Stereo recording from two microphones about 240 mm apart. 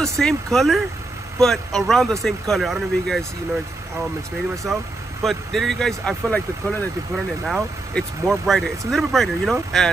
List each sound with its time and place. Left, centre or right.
0.0 s speech: centre
4.7 s speech: centre